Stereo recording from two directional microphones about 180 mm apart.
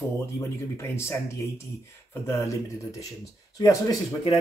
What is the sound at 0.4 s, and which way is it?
Speech, 15° left (ahead or behind).